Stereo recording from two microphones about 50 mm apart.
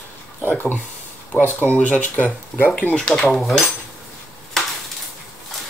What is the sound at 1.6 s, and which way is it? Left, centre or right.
Speech, left.